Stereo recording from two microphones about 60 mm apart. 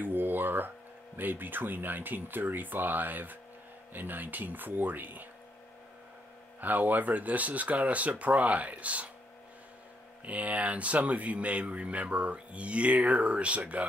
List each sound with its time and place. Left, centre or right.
0.0 s a sound: right
1.1 s speech: right
6.6 s speech: right
10.2 s speech: right